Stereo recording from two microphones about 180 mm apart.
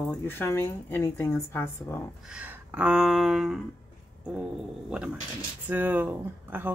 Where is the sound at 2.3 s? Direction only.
10° right (ahead or behind).